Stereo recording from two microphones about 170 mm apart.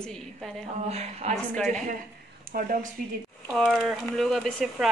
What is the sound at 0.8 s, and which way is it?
Speech, 40° right (ahead or behind).